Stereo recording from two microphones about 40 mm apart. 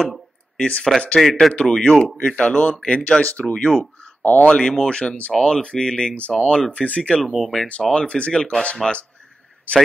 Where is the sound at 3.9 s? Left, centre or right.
Left.